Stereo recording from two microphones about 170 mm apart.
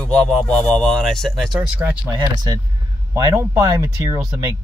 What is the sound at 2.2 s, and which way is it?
Speech, 20° right (ahead or behind).